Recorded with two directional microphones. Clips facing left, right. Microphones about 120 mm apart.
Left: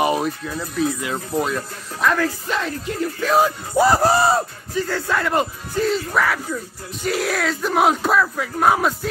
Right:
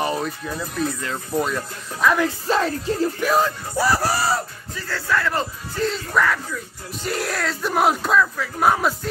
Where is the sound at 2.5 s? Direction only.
35° right (ahead or behind).